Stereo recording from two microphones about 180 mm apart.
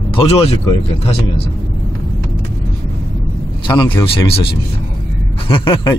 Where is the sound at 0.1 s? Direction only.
30° left (ahead or behind).